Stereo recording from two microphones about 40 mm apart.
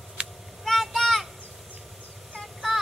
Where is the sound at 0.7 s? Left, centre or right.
Centre.